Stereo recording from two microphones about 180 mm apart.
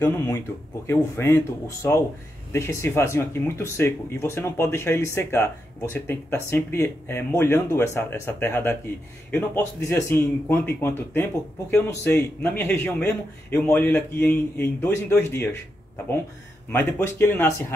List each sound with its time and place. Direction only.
0.8 s speech: 15° left (ahead or behind)
16.7 s speech: 10° left (ahead or behind)